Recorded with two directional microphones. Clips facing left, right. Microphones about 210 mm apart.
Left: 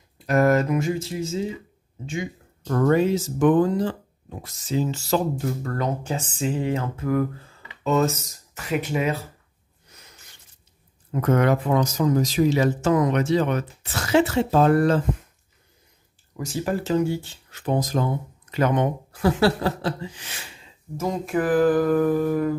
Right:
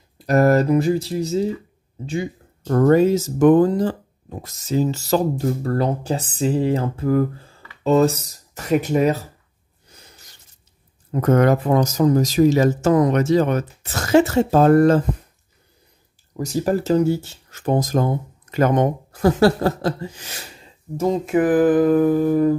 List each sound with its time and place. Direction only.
0.3 s speech: 35° right (ahead or behind)
9.8 s a sound: 30° right (ahead or behind)
11.1 s speech: 40° right (ahead or behind)
16.3 s speech: 40° right (ahead or behind)
21.0 s humming: 25° right (ahead or behind)